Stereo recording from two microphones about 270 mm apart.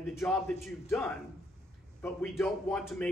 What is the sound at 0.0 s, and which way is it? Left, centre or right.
A man's voice, centre.